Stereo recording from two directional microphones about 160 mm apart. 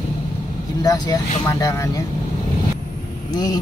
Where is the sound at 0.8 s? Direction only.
25° left (ahead or behind).